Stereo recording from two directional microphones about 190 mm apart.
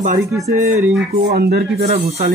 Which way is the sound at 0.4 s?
10° right (ahead or behind).